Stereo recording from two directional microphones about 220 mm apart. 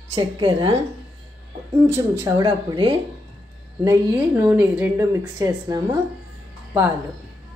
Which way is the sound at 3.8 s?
15° right (ahead or behind).